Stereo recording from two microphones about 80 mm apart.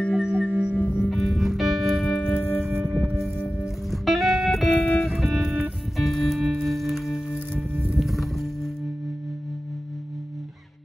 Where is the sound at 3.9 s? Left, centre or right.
Centre.